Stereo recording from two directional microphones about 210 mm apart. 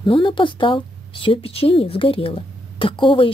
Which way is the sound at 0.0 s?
25° left (ahead or behind).